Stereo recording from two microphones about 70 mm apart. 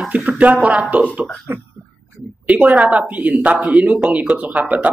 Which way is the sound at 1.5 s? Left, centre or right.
Right.